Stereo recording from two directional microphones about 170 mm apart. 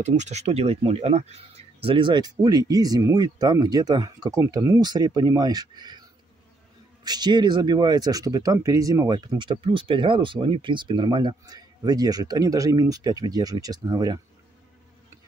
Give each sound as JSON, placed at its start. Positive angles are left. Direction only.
{"t": 0.0, "sound": "speech", "side_deg": -45}
{"t": 7.1, "sound": "speech", "side_deg": -25}